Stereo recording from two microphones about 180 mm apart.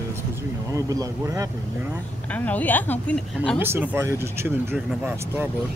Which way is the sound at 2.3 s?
10° left (ahead or behind).